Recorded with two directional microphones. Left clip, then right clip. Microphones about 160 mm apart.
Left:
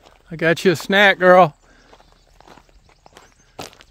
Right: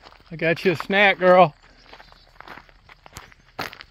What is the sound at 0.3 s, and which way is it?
Speech, 60° left (ahead or behind).